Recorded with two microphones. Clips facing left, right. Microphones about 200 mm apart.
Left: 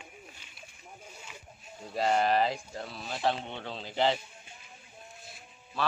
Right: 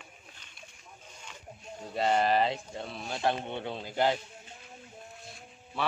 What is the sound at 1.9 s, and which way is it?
Speech, centre (ahead or behind).